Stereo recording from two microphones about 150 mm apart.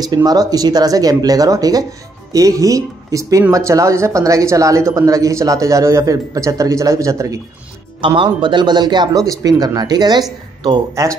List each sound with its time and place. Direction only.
0.0 s speech: 25° right (ahead or behind)
8.0 s speech: 35° right (ahead or behind)